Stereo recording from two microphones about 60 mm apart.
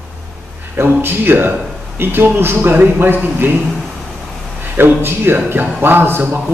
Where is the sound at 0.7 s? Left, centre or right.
Right.